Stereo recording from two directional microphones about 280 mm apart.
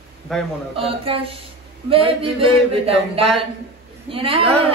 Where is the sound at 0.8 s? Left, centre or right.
Centre.